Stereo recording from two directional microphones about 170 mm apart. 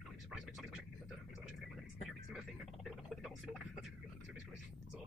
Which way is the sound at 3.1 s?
Centre (ahead or behind).